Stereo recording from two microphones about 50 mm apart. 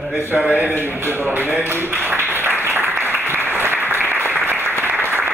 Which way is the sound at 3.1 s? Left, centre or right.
Right.